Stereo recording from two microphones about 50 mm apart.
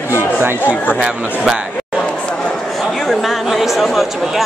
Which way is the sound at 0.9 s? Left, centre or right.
Centre.